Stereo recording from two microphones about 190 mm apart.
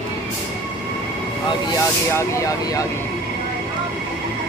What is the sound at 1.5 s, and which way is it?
Speech, 15° left (ahead or behind).